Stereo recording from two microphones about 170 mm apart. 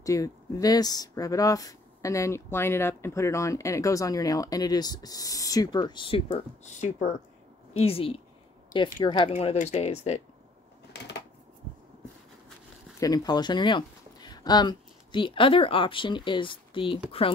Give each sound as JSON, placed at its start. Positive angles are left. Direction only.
{"t": 0.0, "sound": "speech", "side_deg": 20}
{"t": 8.7, "sound": "speech", "side_deg": 55}
{"t": 9.0, "sound": "speech", "side_deg": 30}
{"t": 13.0, "sound": "speech", "side_deg": 20}